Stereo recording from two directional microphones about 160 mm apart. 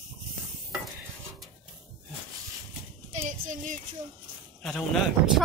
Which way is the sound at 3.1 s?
50° right (ahead or behind).